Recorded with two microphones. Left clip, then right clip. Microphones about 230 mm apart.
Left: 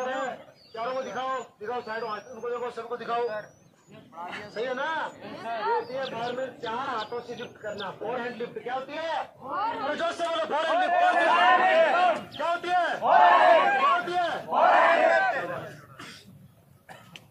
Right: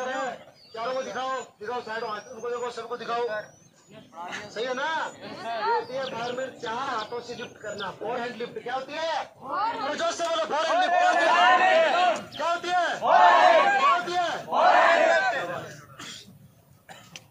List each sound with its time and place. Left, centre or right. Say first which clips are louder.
0.0 s a sound: even; centre
4.6 s a man's voice: right 1 dB; centre
11.3 s a man's voice: right 2 dB; centre
11.7 s a man's voice: even; centre
12.4 s a man's voice: right 1 dB; centre
13.0 s a man's voice: right 1 dB; centre
13.7 s a sound: right 2 dB; centre
14.0 s battle cry: right 1 dB; centre
14.6 s battle cry: right 1 dB; centre
15.0 s a sound: right 1 dB; centre
15.4 s chuckle: right 1 dB; centre